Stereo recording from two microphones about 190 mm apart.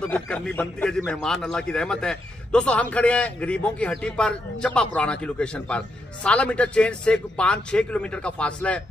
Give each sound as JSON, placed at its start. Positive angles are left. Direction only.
{"t": 0.0, "sound": "a man's voice", "side_deg": 5}